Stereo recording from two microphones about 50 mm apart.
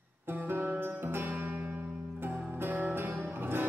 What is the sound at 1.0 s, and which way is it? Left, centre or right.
Music, right.